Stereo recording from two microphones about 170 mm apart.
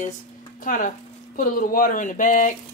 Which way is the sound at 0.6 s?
55° left (ahead or behind).